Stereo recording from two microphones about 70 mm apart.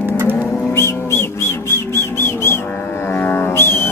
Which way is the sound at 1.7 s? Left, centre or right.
Left.